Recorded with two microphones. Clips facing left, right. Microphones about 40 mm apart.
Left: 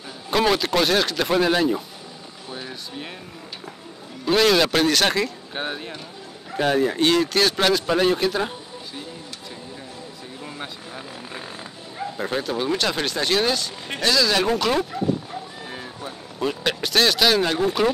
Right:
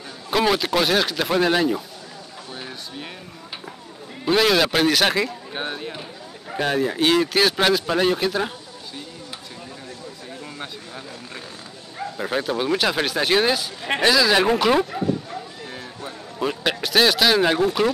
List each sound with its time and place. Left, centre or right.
0.3 s speech: centre
2.5 s a sound: centre
4.3 s speech: centre
12.0 s speech: centre
15.7 s a sound: centre
16.3 s speech: centre
17.6 s speech: centre